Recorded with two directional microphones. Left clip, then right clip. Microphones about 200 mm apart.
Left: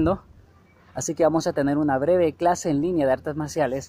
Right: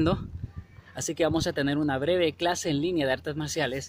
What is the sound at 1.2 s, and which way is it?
A woman's voice, 20° right (ahead or behind).